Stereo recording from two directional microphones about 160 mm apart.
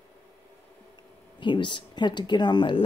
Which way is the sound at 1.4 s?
30° left (ahead or behind).